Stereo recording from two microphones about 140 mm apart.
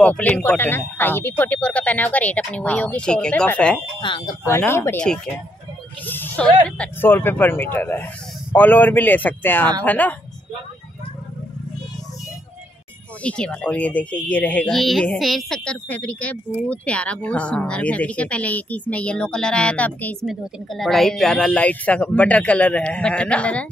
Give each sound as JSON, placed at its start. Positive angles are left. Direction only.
{"t": 0.0, "sound": "speech", "side_deg": 10}
{"t": 4.0, "sound": "speech", "side_deg": 35}
{"t": 4.5, "sound": "speech", "side_deg": 15}
{"t": 5.0, "sound": "speech", "side_deg": 5}
{"t": 13.2, "sound": "speech", "side_deg": 10}